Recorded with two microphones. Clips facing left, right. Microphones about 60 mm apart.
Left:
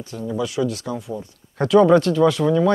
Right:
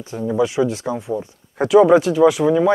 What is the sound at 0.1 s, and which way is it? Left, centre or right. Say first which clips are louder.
Speech: right 6 dB; right.